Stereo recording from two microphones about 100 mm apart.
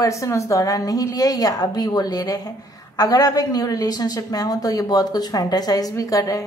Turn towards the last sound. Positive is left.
turn(degrees=35)  # may be behind; listen again after turning